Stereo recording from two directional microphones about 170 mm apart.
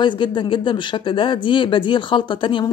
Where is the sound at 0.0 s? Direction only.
30° left (ahead or behind).